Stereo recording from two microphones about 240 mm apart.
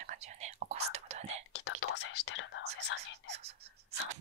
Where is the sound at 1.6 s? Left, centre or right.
Left.